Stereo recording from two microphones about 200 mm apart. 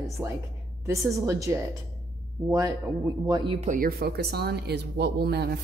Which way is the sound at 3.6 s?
40° right (ahead or behind).